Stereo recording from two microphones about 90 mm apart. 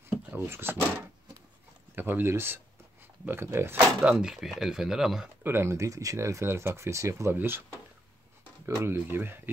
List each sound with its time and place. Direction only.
0.0 s drawer open or close: 25° right (ahead or behind)
2.0 s speech: 20° right (ahead or behind)
4.0 s speech: 5° right (ahead or behind)
5.4 s speech: 25° right (ahead or behind)
8.6 s speech: 30° right (ahead or behind)